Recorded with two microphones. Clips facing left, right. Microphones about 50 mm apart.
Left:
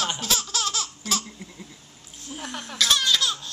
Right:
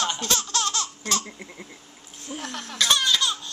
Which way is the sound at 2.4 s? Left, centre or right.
Centre.